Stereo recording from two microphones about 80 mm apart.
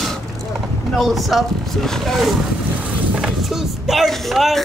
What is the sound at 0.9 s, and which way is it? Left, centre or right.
Speech, centre.